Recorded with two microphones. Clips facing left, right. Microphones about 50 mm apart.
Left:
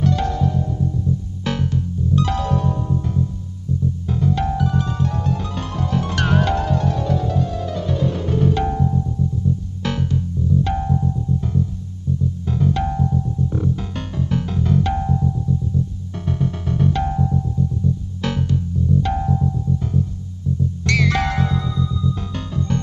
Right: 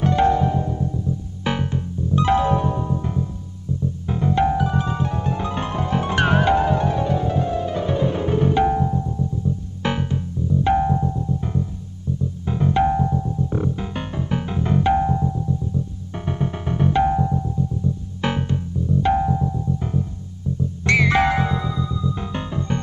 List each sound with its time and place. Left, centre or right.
0.0 s music: right